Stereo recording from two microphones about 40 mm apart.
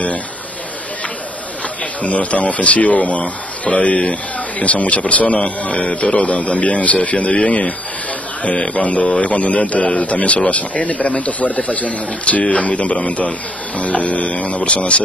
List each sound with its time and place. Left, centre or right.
2.0 s speech: left
8.4 s speech: left